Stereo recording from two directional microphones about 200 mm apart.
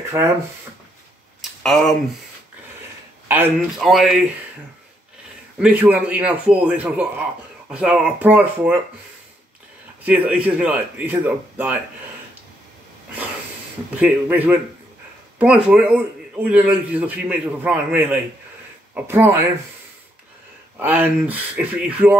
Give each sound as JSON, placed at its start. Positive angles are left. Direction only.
{"t": 0.2, "sound": "a man's voice", "side_deg": -10}
{"t": 1.4, "sound": "a sound", "side_deg": 0}
{"t": 3.3, "sound": "speech", "side_deg": -10}
{"t": 5.6, "sound": "a man's voice", "side_deg": -5}
{"t": 10.0, "sound": "a man's voice", "side_deg": -5}
{"t": 13.9, "sound": "a man's voice", "side_deg": -5}
{"t": 20.8, "sound": "a man's voice", "side_deg": -10}